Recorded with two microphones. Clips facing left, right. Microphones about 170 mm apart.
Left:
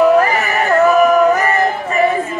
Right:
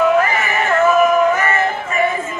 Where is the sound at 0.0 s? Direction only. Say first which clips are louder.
Left 3 dB; 35° left (ahead or behind).